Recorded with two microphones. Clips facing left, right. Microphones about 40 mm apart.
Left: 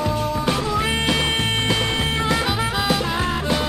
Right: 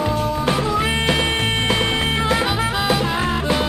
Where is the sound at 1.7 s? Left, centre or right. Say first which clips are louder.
Right 2 dB; right.